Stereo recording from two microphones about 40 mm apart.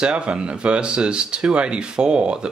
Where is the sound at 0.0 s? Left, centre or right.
Right.